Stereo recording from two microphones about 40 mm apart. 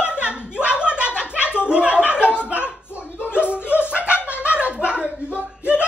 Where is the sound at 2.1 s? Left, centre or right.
Right.